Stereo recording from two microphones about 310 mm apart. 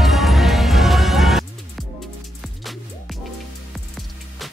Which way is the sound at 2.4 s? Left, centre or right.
Centre.